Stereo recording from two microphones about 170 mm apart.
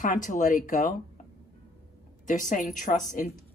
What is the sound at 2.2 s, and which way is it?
A woman's voice, 50° left (ahead or behind).